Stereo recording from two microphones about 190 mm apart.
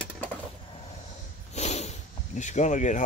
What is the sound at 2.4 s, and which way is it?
Speech, 40° left (ahead or behind).